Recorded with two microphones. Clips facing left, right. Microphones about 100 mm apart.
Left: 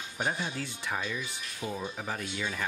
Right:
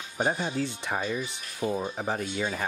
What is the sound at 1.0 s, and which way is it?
Speech, 40° right (ahead or behind).